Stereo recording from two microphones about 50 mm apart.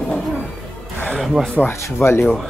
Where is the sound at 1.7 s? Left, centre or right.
Left.